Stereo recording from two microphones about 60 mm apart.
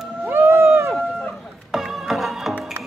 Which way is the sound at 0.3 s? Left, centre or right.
Right.